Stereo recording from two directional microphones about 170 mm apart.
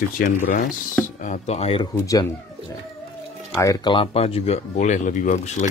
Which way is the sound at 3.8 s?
30° left (ahead or behind).